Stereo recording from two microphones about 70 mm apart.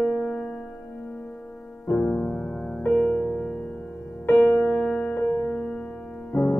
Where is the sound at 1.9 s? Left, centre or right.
Centre.